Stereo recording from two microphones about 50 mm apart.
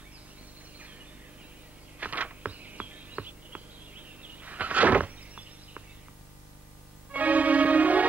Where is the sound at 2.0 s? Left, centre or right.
Right.